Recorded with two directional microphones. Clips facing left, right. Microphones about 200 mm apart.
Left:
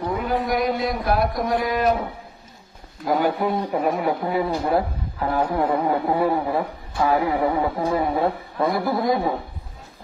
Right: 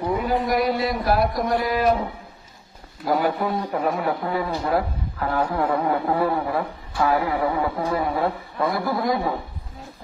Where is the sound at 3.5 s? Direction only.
20° left (ahead or behind).